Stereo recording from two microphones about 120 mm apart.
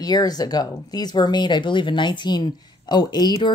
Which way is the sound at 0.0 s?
35° left (ahead or behind).